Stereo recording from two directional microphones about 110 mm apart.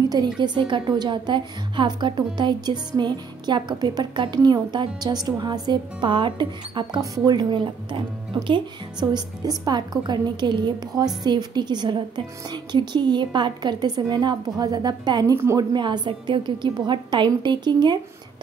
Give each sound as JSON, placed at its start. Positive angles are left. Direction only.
{"t": 0.1, "sound": "a woman's voice", "side_deg": -40}
{"t": 9.1, "sound": "a woman's voice", "side_deg": -35}
{"t": 15.3, "sound": "a woman's voice", "side_deg": -25}
{"t": 15.7, "sound": "a woman's voice", "side_deg": -40}